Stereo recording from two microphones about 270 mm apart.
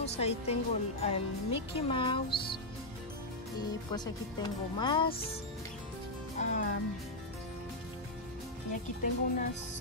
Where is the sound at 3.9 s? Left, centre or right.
Centre.